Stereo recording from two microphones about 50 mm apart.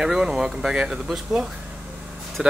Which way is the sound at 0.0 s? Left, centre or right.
Centre.